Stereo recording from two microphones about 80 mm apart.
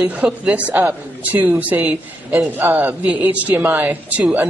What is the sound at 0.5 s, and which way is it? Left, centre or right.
A man's voice, centre.